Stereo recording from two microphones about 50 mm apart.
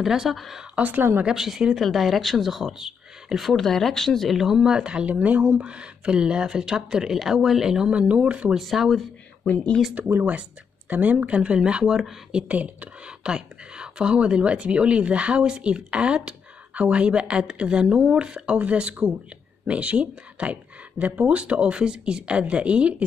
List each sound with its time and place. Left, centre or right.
0.0 s speech: centre
0.7 s a woman's voice: right
1.2 s speech: centre
4.4 s speech: centre
7.9 s speech: right
8.5 s speech: centre
10.0 s a woman's voice: right
11.8 s speech: centre
12.4 s a woman's voice: right
13.2 s a woman's voice: centre